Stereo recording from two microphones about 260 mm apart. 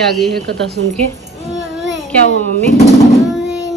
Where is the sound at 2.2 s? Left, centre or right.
Left.